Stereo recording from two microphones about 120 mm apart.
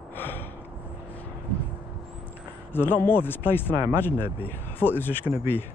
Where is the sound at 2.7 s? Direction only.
15° left (ahead or behind).